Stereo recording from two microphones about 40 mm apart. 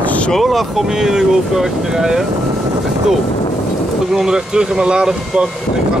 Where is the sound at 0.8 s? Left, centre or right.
Centre.